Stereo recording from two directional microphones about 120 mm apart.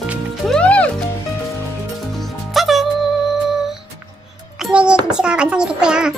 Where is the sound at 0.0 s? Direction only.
10° right (ahead or behind).